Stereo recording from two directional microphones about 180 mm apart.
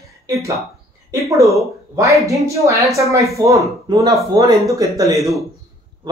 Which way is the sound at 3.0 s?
15° right (ahead or behind).